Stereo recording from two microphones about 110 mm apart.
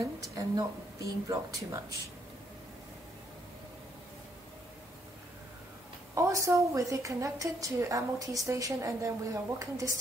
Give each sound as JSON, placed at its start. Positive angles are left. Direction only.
{"t": 0.0, "sound": "speech", "side_deg": -30}
{"t": 6.1, "sound": "a woman's voice", "side_deg": -30}